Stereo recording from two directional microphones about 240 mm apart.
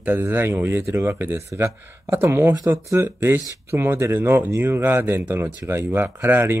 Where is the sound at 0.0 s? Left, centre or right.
Centre.